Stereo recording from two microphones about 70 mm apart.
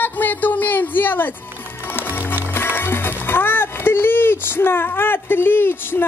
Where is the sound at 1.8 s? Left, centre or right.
Left.